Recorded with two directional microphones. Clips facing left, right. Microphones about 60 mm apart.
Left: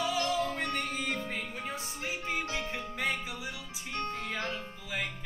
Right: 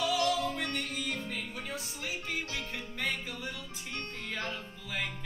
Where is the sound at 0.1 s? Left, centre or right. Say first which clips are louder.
Right 1 dB; left.